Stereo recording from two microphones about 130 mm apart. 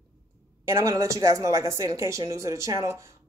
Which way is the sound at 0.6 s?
25° right (ahead or behind).